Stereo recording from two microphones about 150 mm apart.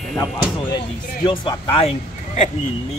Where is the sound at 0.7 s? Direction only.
30° left (ahead or behind).